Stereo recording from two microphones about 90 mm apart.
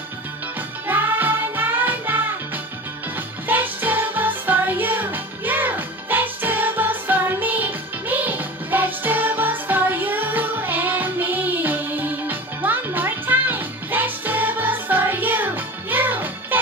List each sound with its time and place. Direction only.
0.6 s music: 20° right (ahead or behind)